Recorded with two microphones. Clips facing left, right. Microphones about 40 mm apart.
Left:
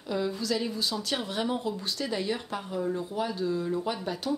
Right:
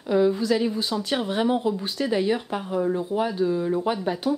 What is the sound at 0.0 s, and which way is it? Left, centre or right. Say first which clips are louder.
Speech: right 10 dB; right.